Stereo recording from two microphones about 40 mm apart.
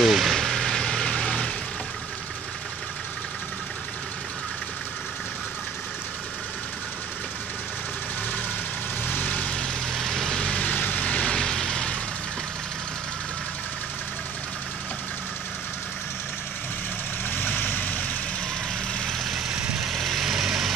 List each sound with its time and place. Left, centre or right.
0.0 s vehicle: centre
9.0 s vehicle: left
9.6 s vehicle: centre
10.4 s vehicle: left
10.7 s vehicle: left
11.1 s vehicle: left
11.3 s vehicle: centre
17.3 s vehicle: left
19.5 s vehicle: right
19.9 s vehicle: centre
20.2 s vehicle: centre